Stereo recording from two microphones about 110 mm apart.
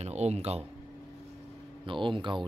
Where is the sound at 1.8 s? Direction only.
50° right (ahead or behind).